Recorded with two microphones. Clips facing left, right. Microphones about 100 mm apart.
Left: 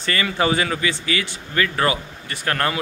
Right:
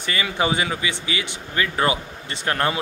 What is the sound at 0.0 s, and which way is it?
Speech, 15° right (ahead or behind).